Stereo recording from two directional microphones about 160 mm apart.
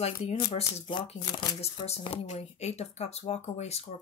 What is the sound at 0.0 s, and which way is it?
Speech, 40° left (ahead or behind).